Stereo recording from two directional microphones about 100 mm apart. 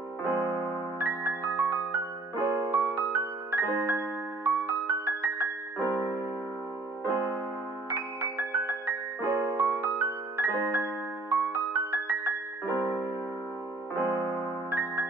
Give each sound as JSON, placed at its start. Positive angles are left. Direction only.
{"t": 0.3, "sound": "music", "side_deg": 20}
{"t": 0.9, "sound": "music", "side_deg": -20}
{"t": 7.9, "sound": "music", "side_deg": -15}
{"t": 13.9, "sound": "music", "side_deg": 20}
{"t": 14.7, "sound": "music", "side_deg": -15}